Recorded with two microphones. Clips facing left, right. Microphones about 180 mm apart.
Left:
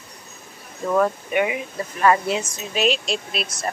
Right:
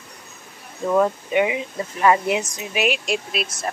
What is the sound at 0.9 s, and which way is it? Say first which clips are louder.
Speech: right 1 dB; 15° right (ahead or behind).